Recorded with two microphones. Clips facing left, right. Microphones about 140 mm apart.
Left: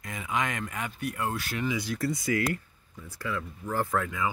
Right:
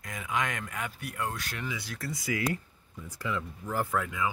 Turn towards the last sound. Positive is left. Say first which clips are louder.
# left 2 dB
turn(degrees=-5)  # may be behind; listen again after turning